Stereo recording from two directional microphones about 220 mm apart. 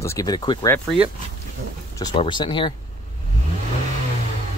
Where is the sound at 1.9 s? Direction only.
20° left (ahead or behind).